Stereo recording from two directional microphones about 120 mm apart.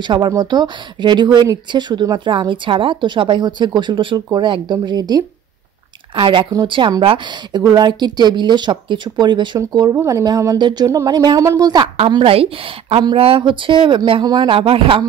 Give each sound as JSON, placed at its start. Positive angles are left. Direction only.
{"t": 0.0, "sound": "speech", "side_deg": -40}
{"t": 12.1, "sound": "speech", "side_deg": -45}